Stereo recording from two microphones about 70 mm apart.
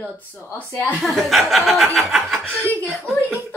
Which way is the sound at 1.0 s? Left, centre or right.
Centre.